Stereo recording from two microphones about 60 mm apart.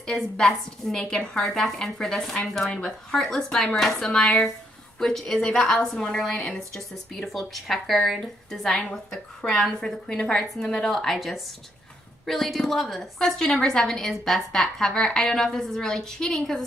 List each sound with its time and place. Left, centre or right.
0.0 s a woman's voice: centre
2.7 s a woman's voice: centre